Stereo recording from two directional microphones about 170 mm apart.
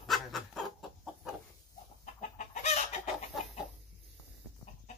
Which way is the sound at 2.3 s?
45° left (ahead or behind).